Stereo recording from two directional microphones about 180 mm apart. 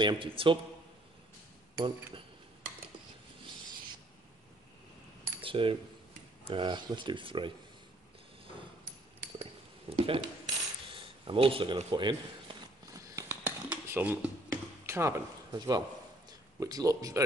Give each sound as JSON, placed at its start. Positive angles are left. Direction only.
{"t": 0.0, "sound": "speech", "side_deg": -25}
{"t": 5.4, "sound": "coin", "side_deg": -30}
{"t": 6.4, "sound": "speech", "side_deg": -30}
{"t": 9.4, "sound": "cutlery", "side_deg": -30}
{"t": 12.9, "sound": "a sound", "side_deg": -15}